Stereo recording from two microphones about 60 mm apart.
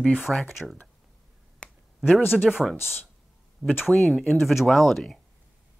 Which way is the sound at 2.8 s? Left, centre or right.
Left.